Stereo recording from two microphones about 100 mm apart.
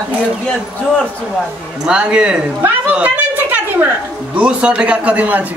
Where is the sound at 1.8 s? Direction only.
10° right (ahead or behind).